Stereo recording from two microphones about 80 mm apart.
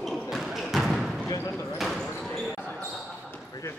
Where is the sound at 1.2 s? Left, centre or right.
Left.